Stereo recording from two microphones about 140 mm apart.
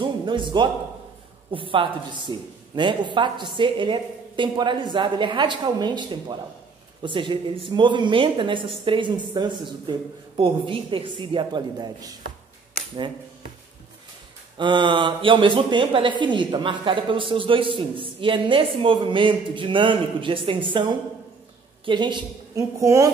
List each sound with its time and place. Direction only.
0.0 s speech: 35° right (ahead or behind)
14.6 s a woman's voice: 35° right (ahead or behind)